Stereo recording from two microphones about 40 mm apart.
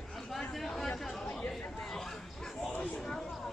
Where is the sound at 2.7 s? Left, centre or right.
Left.